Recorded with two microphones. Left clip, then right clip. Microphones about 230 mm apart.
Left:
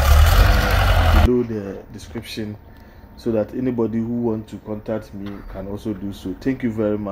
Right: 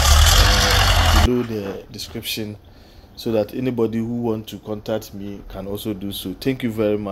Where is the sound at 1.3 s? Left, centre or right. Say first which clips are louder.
Left 1 dB; centre.